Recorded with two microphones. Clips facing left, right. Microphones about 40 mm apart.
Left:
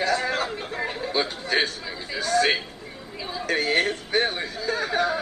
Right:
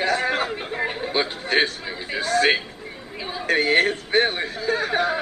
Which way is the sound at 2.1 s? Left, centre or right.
Right.